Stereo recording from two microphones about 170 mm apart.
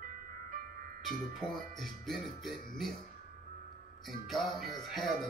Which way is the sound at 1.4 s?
25° left (ahead or behind).